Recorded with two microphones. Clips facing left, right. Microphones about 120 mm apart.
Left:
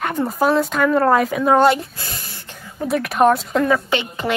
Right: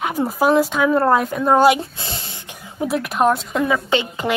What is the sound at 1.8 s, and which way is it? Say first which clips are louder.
Speech: right 2 dB; 25° right (ahead or behind).